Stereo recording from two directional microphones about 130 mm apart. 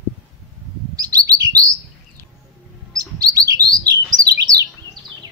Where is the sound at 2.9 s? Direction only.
30° right (ahead or behind).